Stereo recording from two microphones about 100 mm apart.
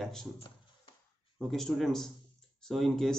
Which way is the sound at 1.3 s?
5° left (ahead or behind).